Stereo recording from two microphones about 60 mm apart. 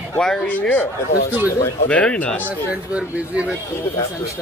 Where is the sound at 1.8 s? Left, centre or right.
Centre.